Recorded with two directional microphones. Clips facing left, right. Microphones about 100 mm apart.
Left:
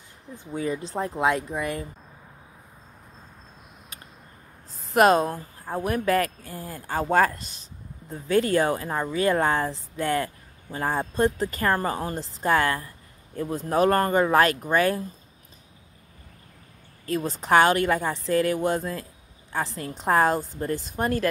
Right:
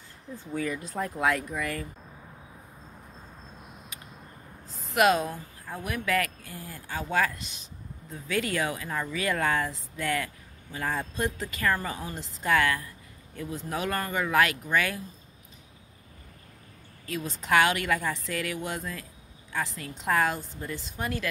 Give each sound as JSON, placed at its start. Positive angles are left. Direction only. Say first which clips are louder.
{"t": 0.3, "sound": "speech", "louder": "left 3 dB", "side_deg": 20}
{"t": 4.9, "sound": "speech", "louder": "left 5 dB", "side_deg": 40}
{"t": 17.0, "sound": "speech", "louder": "left 7 dB", "side_deg": 40}